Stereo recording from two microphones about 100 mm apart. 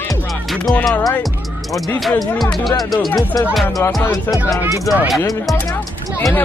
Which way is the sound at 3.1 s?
40° left (ahead or behind).